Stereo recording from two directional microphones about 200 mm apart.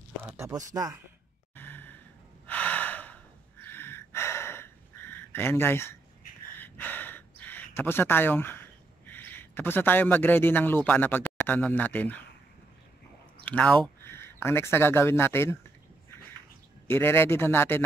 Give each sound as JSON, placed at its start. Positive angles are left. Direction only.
{"t": 0.2, "sound": "a sound", "side_deg": -10}
{"t": 0.7, "sound": "speech", "side_deg": -15}
{"t": 1.5, "sound": "sigh", "side_deg": 10}
{"t": 2.4, "sound": "gasp", "side_deg": 5}
{"t": 13.5, "sound": "speech", "side_deg": 5}
{"t": 16.8, "sound": "a man's voice", "side_deg": 10}